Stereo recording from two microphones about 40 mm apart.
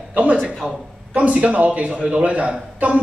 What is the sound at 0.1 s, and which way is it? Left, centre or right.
A man's voice, right.